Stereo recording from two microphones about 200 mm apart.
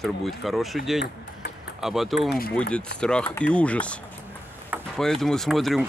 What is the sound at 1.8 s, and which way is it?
Speech, centre (ahead or behind).